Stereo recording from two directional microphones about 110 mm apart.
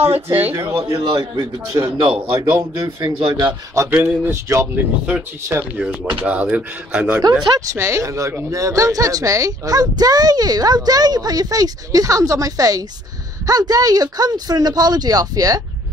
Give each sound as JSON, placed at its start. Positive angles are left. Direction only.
{"t": 0.3, "sound": "speech", "side_deg": -15}
{"t": 0.9, "sound": "speech", "side_deg": -45}
{"t": 2.0, "sound": "a man's voice", "side_deg": -55}
{"t": 2.7, "sound": "a man's voice", "side_deg": -35}
{"t": 3.7, "sound": "speech", "side_deg": -20}
{"t": 4.3, "sound": "speech", "side_deg": -25}
{"t": 4.7, "sound": "speech", "side_deg": -10}
{"t": 7.5, "sound": "speech", "side_deg": -25}